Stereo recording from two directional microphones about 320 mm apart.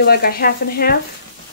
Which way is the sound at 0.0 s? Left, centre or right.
Left.